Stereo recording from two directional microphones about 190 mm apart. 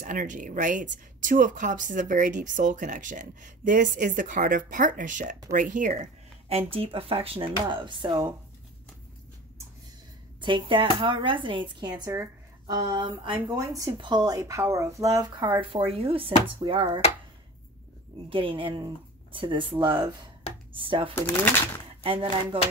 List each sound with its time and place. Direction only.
0.0 s speech: 40° right (ahead or behind)
6.5 s speech: 30° right (ahead or behind)
10.4 s speech: 25° right (ahead or behind)
18.3 s speech: 25° right (ahead or behind)